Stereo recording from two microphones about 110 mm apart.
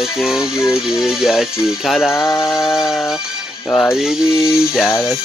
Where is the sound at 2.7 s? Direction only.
5° right (ahead or behind).